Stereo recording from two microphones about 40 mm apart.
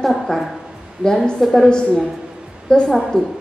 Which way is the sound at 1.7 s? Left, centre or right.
Left.